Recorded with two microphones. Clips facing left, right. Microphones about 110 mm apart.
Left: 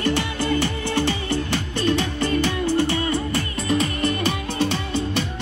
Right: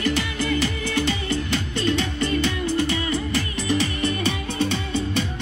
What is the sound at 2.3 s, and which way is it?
Music, 25° left (ahead or behind).